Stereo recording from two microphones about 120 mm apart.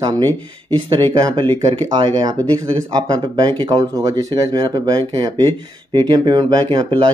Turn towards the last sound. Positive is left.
turn(degrees=-40)  # may be behind; listen again after turning